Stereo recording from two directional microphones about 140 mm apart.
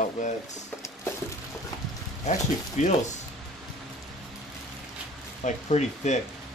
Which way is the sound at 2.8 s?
55° left (ahead or behind).